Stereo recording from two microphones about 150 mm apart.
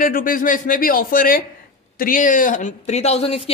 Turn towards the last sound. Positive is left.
turn(degrees=40)  # may be behind; listen again after turning